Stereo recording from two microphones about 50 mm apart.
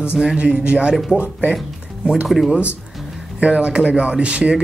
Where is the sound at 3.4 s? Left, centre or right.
Right.